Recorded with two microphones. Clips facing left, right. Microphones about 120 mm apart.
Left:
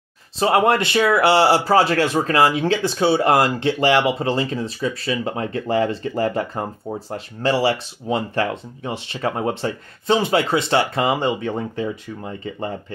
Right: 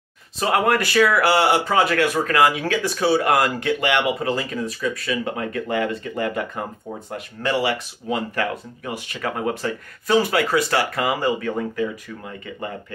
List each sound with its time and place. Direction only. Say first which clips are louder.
0.4 s speech: left 3 dB; 25° left (ahead or behind)